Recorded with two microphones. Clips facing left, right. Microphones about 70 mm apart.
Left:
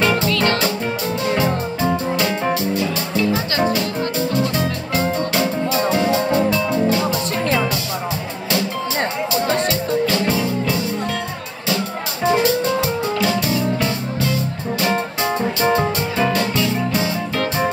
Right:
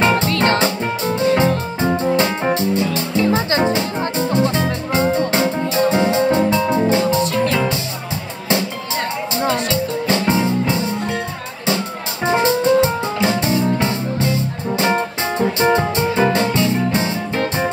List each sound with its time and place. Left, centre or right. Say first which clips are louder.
0.0 s music: right 2 dB; right
2.5 s music: right 2 dB; right
7.3 s music: right 2 dB; left
10.0 s music: right 2 dB; right
12.3 s music: right 2 dB; right